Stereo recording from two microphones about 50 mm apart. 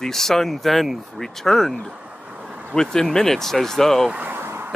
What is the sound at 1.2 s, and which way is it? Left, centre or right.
Speech, centre.